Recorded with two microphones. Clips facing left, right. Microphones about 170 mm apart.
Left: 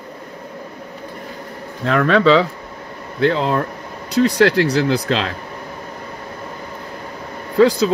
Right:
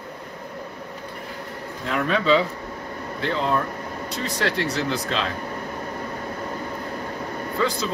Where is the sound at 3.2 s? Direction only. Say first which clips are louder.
Left 7 dB; 75° left (ahead or behind).